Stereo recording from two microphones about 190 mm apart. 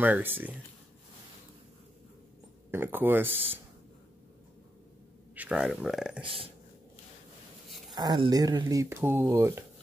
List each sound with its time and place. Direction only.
0.0 s speech: 10° right (ahead or behind)
2.7 s speech: 10° right (ahead or behind)
5.3 s speech: 5° right (ahead or behind)
6.2 s speech: 30° right (ahead or behind)
7.9 s speech: 20° right (ahead or behind)